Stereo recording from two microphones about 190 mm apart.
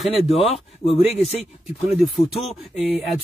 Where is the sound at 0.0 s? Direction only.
Centre (ahead or behind).